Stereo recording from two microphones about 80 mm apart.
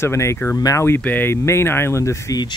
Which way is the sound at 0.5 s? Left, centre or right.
Left.